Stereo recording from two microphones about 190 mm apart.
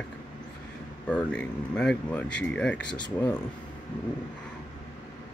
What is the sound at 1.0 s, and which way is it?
Speech, 5° left (ahead or behind).